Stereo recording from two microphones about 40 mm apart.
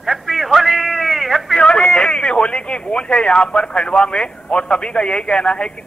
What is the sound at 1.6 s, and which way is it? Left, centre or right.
A man's voice, left.